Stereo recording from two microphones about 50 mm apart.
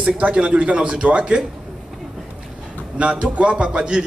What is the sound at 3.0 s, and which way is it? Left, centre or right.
Speech, right.